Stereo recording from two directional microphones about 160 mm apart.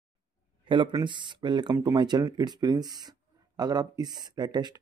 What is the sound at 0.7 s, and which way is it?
Speech, 30° right (ahead or behind).